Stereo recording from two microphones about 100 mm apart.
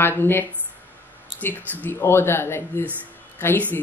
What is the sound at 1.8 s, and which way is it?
Speech, 20° left (ahead or behind).